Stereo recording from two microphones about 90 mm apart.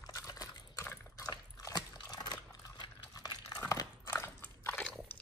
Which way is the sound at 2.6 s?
45° left (ahead or behind).